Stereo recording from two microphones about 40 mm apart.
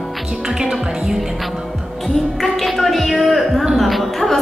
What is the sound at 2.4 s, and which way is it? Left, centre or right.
Gargling, centre.